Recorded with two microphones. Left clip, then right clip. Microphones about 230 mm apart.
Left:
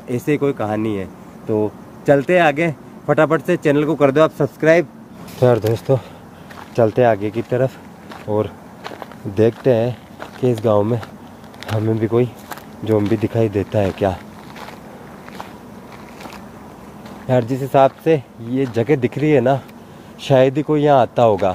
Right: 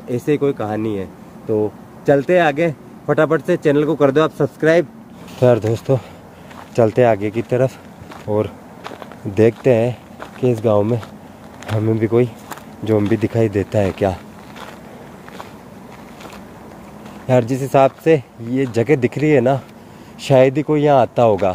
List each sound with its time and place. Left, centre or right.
0.1 s speech: centre; by 8.4 s right
9.7 s speech: right
17.3 s speech: right